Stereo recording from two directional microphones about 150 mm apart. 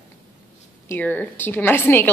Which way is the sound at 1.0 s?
10° left (ahead or behind).